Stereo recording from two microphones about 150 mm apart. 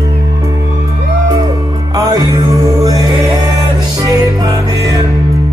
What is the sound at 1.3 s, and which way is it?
Music, 25° right (ahead or behind).